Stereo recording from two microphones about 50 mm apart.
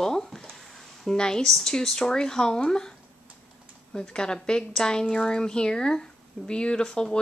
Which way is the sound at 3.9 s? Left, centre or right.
Centre.